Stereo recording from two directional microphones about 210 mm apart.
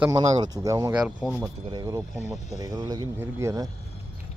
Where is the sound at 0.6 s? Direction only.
15° right (ahead or behind).